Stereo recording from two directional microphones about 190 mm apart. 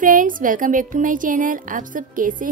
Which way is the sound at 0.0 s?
45° right (ahead or behind).